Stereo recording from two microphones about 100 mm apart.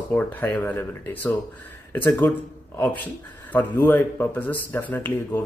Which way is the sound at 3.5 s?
20° left (ahead or behind).